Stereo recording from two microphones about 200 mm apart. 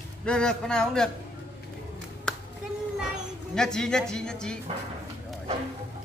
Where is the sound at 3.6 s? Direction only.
5° left (ahead or behind).